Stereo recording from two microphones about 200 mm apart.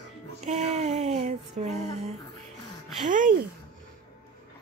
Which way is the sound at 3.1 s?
40° right (ahead or behind).